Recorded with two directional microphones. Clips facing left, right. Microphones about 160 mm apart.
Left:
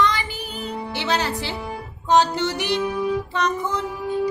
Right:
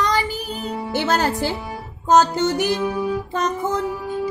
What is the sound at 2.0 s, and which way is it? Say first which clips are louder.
Music: right 3 dB; 45° right (ahead or behind).